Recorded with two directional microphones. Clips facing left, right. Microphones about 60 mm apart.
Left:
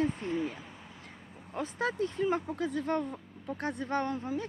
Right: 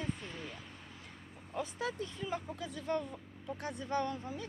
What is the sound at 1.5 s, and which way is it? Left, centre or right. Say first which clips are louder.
Speech: left 5 dB; left.